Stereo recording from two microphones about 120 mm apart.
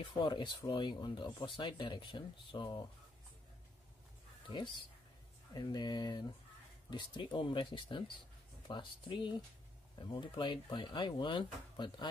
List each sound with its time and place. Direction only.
0.0 s speech: 45° left (ahead or behind)
5.5 s speech: 35° left (ahead or behind)